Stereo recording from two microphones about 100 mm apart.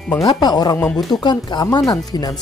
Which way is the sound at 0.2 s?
45° left (ahead or behind).